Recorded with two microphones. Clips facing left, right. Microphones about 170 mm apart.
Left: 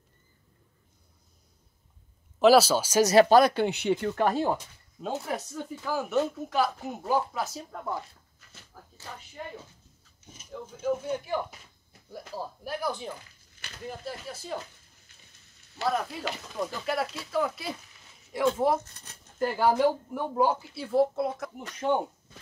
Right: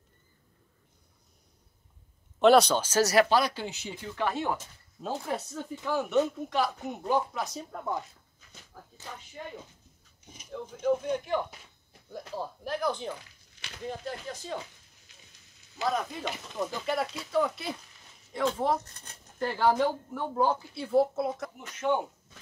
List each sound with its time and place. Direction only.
2.3 s speech: 5° left (ahead or behind)
3.3 s speech: 50° left (ahead or behind)
5.5 s speech: centre (ahead or behind)
10.5 s speech: 5° left (ahead or behind)
15.8 s speech: 5° left (ahead or behind)
21.5 s speech: 35° left (ahead or behind)